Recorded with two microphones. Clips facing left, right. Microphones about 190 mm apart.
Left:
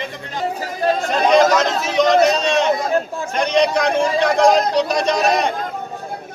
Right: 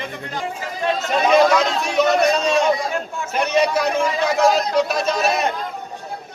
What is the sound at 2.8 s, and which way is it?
Speech, 35° left (ahead or behind).